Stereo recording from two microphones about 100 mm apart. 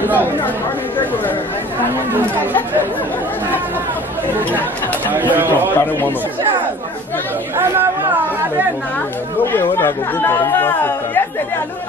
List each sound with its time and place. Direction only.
0.0 s speech: 20° right (ahead or behind)
5.1 s speech: 20° right (ahead or behind)
5.8 s speech: 20° left (ahead or behind)
7.5 s speech: 25° right (ahead or behind)
9.4 s speech: 20° left (ahead or behind)